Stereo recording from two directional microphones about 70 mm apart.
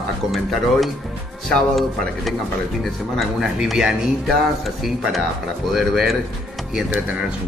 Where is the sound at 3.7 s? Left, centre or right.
Centre.